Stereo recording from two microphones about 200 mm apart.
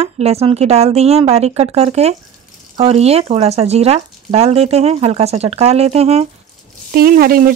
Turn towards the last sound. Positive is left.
turn(degrees=-50)  # may be behind; listen again after turning